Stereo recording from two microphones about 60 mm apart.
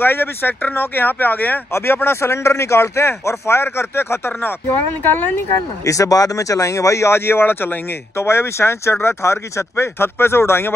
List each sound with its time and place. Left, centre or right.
0.0 s speech: left
1.7 s speech: left
5.9 s speech: left